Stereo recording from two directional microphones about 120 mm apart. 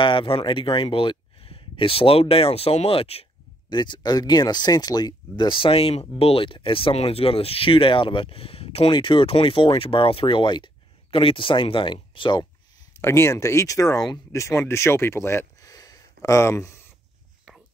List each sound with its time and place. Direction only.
0.0 s speech: 45° left (ahead or behind)
3.7 s speech: 40° left (ahead or behind)
13.0 s speech: 20° left (ahead or behind)